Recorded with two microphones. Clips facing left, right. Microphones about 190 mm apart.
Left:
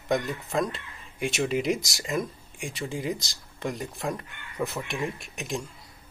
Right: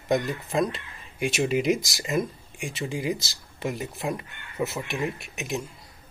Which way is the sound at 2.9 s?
5° right (ahead or behind).